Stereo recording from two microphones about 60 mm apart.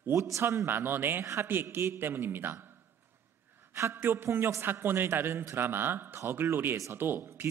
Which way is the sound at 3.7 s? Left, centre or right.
Right.